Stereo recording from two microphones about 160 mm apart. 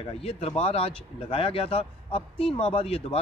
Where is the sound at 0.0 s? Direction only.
40° left (ahead or behind).